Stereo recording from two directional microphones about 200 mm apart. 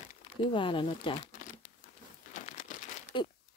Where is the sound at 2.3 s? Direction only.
40° left (ahead or behind).